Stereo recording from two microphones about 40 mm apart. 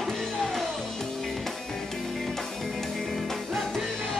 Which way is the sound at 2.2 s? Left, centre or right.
Centre.